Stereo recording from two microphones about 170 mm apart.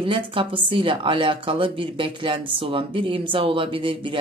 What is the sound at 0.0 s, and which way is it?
Speech, 30° right (ahead or behind).